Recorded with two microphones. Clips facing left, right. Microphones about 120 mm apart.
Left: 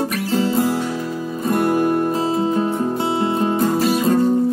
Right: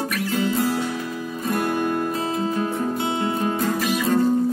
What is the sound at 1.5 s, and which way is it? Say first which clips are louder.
Music: left 6 dB; 35° left (ahead or behind).